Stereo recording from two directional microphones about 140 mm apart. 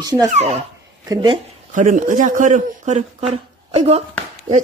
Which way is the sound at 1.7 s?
70° right (ahead or behind).